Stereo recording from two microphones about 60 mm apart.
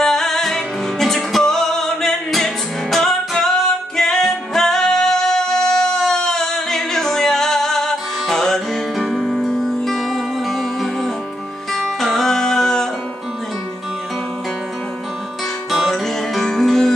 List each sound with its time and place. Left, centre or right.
0.0 s music: centre
15.7 s music: centre